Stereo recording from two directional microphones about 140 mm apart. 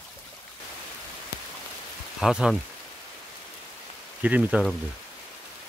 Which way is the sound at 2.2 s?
5° right (ahead or behind).